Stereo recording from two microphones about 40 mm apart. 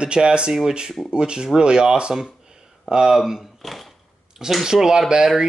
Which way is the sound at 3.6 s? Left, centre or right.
Centre.